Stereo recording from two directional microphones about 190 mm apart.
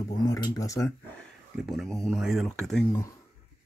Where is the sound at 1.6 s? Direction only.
Centre (ahead or behind).